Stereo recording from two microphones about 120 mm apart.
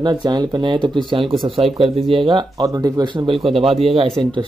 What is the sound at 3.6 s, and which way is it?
Speech, 55° right (ahead or behind).